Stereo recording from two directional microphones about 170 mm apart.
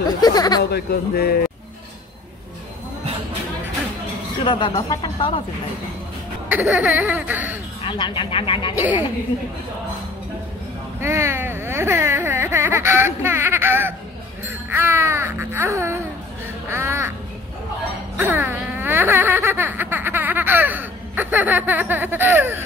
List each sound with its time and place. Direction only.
0.2 s speech: 20° left (ahead or behind)
0.7 s speech: 70° left (ahead or behind)
4.5 s speech: 25° left (ahead or behind)
6.5 s music: 10° right (ahead or behind)
7.8 s speech: 30° left (ahead or behind)
8.7 s music: 10° right (ahead or behind)
11.0 s a sound: 15° right (ahead or behind)
14.7 s music: 15° right (ahead or behind)
18.1 s a sound: 15° right (ahead or behind)